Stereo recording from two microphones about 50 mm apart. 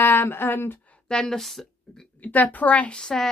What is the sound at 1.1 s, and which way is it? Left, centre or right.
Speech, centre.